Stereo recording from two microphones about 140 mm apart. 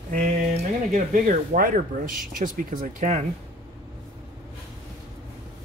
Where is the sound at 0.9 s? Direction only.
80° right; by 3.3 s 60° right (ahead or behind).